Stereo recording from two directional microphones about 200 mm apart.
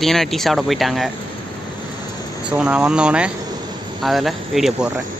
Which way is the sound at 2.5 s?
5° right (ahead or behind).